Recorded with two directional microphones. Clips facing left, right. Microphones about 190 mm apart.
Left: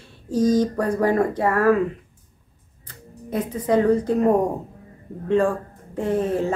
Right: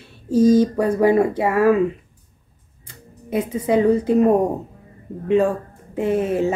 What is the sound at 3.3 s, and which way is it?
Speech, 10° right (ahead or behind).